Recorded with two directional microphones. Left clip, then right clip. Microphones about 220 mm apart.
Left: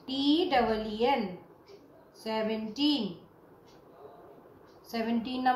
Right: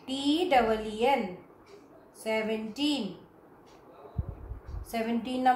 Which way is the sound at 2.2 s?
30° right (ahead or behind).